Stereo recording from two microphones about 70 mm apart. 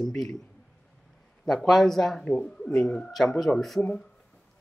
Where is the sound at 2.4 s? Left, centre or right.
Centre.